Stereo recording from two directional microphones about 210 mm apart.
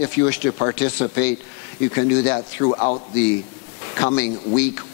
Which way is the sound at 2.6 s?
30° left (ahead or behind).